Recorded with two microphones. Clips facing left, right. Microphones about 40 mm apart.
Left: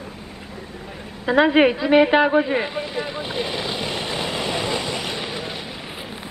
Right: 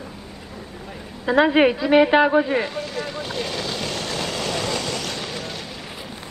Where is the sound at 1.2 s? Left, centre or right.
Centre.